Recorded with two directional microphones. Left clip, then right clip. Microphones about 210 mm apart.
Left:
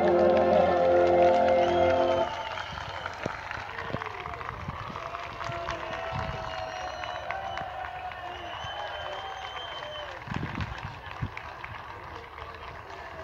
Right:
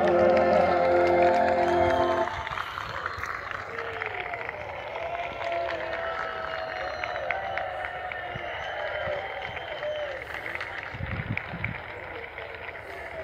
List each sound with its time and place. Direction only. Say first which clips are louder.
0.0 s music: right 1 dB; 20° right (ahead or behind); by 2.6 s 30° left (ahead or behind)
5.4 s music: right 4 dB; 35° left (ahead or behind)